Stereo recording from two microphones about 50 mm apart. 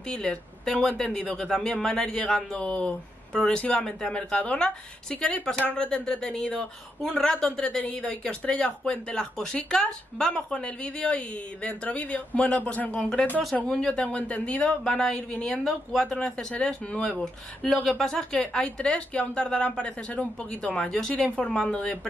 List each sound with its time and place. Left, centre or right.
0.1 s a man's voice: centre
5.6 s a woman's voice: left
6.0 s a man's voice: centre
20.7 s a man's voice: centre